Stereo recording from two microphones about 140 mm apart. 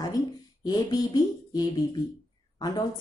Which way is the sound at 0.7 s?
30° left (ahead or behind).